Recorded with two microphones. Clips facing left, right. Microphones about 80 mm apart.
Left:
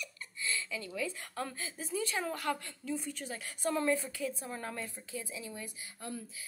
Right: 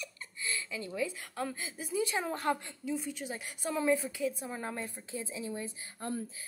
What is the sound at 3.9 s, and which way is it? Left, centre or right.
A woman's voice, centre.